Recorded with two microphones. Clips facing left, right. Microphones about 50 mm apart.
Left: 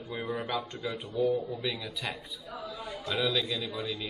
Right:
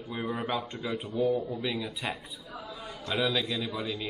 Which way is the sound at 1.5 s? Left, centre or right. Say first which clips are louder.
Right 2 dB; centre.